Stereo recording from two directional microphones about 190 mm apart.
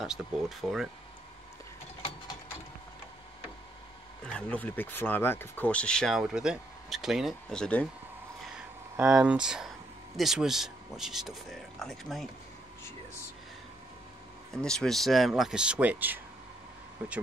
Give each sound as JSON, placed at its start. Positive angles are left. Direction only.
{"t": 0.0, "sound": "speech", "side_deg": -5}
{"t": 4.3, "sound": "speech", "side_deg": 5}
{"t": 8.5, "sound": "speech", "side_deg": -5}
{"t": 14.5, "sound": "speech", "side_deg": 5}